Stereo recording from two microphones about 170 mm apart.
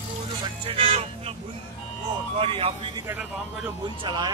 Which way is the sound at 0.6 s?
35° right (ahead or behind).